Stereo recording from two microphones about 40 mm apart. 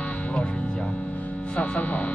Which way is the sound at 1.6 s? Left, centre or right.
Left.